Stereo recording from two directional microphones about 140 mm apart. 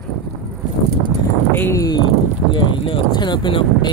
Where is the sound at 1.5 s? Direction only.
20° left (ahead or behind).